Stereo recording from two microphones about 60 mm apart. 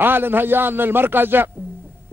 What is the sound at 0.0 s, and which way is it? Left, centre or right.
A man's voice, right.